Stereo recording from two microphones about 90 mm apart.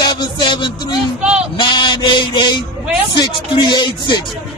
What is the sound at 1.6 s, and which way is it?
Speech, 60° left (ahead or behind).